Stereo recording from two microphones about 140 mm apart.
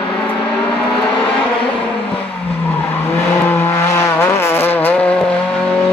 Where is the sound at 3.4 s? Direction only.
15° left (ahead or behind).